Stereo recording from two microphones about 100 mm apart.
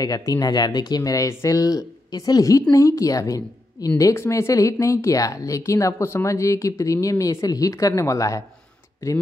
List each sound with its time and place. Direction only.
0.0 s speech: 35° left (ahead or behind)